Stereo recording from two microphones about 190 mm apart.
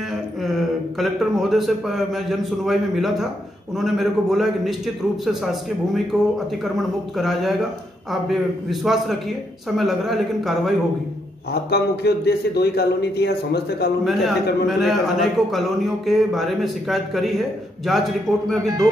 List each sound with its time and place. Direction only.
0.4 s a man's voice: centre (ahead or behind)
11.7 s a man's voice: 60° left (ahead or behind)
14.0 s a man's voice: centre (ahead or behind)